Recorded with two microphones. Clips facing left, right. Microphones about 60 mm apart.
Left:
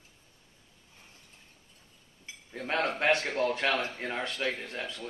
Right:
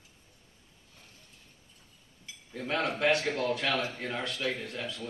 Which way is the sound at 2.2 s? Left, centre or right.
Left.